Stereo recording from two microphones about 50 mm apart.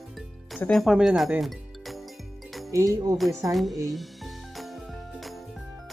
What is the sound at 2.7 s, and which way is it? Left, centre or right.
Speech, right.